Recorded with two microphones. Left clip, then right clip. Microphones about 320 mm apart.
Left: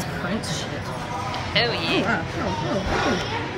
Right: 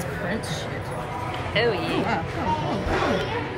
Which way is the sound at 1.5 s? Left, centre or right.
Centre.